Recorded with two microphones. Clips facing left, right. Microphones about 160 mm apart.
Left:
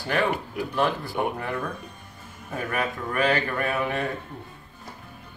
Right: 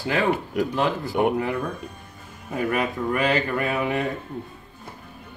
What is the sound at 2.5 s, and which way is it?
Speech, 15° right (ahead or behind).